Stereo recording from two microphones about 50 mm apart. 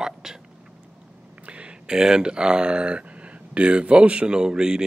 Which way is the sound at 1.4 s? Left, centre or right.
Right.